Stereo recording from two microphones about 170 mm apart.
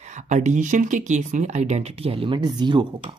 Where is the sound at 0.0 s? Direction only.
45° right (ahead or behind); by 2.9 s 25° right (ahead or behind).